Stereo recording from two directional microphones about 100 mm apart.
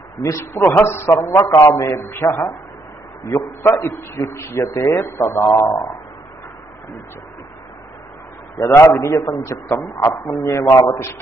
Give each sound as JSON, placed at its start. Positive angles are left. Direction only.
{"t": 0.2, "sound": "a man's voice", "side_deg": 30}
{"t": 8.5, "sound": "a man's voice", "side_deg": 30}